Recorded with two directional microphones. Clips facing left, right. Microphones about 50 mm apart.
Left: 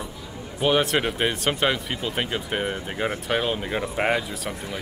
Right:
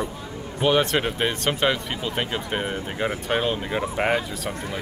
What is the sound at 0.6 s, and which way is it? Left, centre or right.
Speech, centre.